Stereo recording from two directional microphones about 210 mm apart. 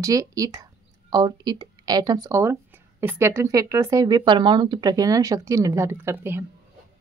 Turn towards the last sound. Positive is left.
turn(degrees=-10)  # may be behind; listen again after turning